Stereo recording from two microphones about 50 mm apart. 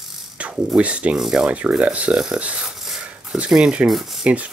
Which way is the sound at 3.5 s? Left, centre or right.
Centre.